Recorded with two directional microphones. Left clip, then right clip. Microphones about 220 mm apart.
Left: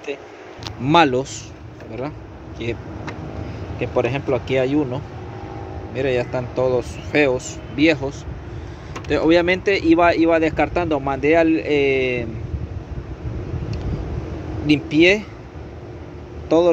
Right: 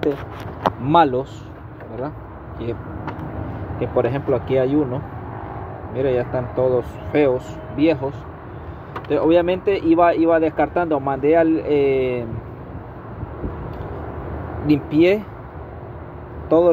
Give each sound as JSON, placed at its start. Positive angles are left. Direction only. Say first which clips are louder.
{"t": 0.8, "sound": "speech", "louder": "left 1 dB", "side_deg": 20}
{"t": 3.8, "sound": "speech", "louder": "right 1 dB", "side_deg": 5}
{"t": 9.1, "sound": "speech", "louder": "even", "side_deg": 20}
{"t": 14.7, "sound": "speech", "louder": "left 1 dB", "side_deg": 5}
{"t": 16.4, "sound": "speech", "louder": "right 1 dB", "side_deg": 5}